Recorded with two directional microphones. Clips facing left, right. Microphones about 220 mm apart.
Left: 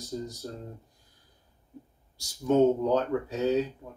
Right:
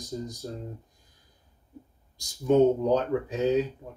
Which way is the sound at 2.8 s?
15° right (ahead or behind).